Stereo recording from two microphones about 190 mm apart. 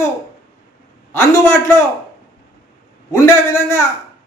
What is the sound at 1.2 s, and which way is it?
Speech, 15° left (ahead or behind).